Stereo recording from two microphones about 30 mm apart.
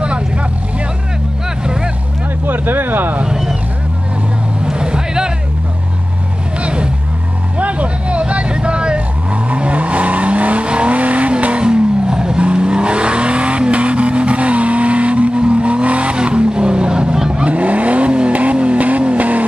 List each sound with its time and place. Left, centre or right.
2.4 s a sound: right
3.3 s vehicle: centre
4.6 s vehicle: right
6.6 s vehicle: right
7.5 s vehicle: right
11.6 s vehicle: right
16.2 s vehicle: right
17.5 s vehicle: right
18.3 s vehicle: right